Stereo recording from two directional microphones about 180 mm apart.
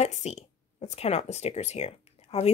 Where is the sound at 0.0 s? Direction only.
40° left (ahead or behind).